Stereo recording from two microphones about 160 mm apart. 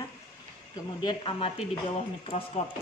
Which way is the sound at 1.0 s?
30° left (ahead or behind).